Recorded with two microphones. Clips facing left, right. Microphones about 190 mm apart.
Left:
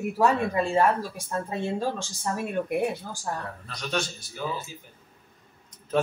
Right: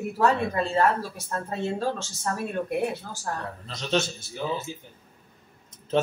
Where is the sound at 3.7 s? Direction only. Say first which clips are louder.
Right 4 dB; 25° right (ahead or behind).